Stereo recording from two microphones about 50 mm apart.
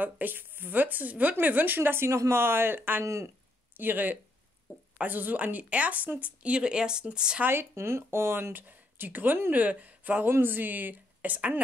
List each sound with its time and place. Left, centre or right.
0.0 s speech: right
2.0 s speech: right
2.4 s speech: right
7.7 s speech: right
8.5 s speech: right
10.4 s speech: right